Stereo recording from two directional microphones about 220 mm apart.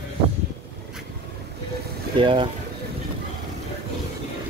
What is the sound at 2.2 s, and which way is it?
Speech, 25° right (ahead or behind).